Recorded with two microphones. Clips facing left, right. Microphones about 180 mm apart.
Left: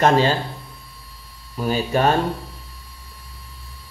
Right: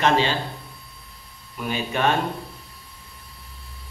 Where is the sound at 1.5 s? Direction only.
35° left (ahead or behind).